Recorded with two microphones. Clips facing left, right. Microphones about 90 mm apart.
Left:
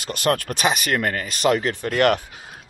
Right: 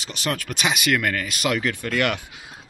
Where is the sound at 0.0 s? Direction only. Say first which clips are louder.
Left 6 dB; 50° left (ahead or behind).